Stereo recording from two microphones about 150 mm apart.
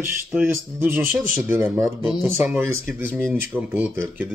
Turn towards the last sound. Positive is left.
turn(degrees=-10)  # may be behind; listen again after turning